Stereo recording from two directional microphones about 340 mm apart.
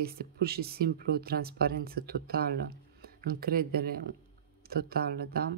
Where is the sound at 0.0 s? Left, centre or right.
Right.